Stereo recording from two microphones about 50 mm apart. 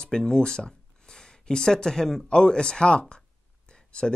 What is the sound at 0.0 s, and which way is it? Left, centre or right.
Speech, centre.